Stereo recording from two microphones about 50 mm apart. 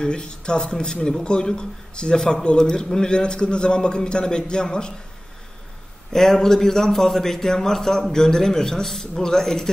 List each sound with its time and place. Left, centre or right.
0.0 s a man's voice: centre
6.1 s a man's voice: centre